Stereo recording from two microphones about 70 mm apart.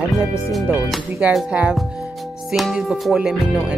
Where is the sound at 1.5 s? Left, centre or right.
Centre.